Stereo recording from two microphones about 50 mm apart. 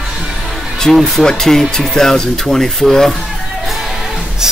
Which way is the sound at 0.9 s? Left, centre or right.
Centre.